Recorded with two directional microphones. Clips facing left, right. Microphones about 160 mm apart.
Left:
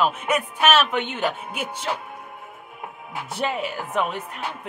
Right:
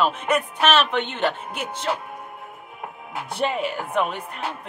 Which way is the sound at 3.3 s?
Centre (ahead or behind).